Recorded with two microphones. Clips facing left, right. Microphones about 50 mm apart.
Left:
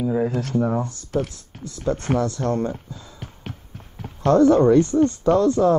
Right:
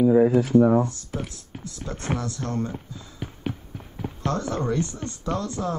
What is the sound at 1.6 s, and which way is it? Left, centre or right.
Speech, left.